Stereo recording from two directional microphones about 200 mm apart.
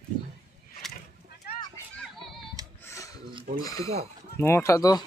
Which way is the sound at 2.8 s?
15° left (ahead or behind).